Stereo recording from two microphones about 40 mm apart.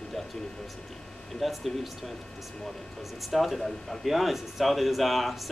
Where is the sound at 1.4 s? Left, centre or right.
Centre.